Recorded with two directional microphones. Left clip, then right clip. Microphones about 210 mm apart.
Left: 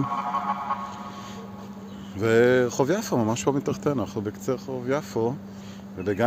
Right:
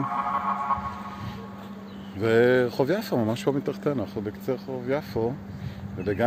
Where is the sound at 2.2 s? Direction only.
Centre (ahead or behind).